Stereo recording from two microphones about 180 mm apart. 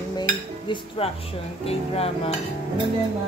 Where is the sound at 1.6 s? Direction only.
35° left (ahead or behind).